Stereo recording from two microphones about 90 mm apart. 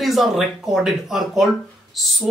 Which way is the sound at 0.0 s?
Centre (ahead or behind).